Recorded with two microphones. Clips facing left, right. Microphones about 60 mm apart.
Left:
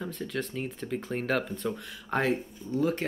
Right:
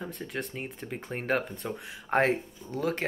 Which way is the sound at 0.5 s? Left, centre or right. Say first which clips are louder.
Left 4 dB; centre.